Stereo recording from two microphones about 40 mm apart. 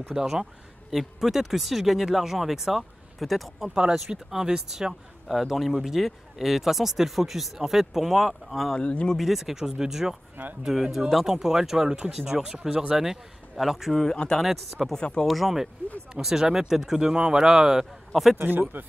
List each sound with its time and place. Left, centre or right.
0.1 s speech: centre
3.5 s speech: centre
5.5 s speech: centre
8.7 s speech: left
9.1 s speech: centre
14.1 s speech: centre
14.4 s speech: centre
15.0 s speech: left
15.2 s speech: centre
16.2 s speech: centre
17.1 s speech: right
18.4 s speech: right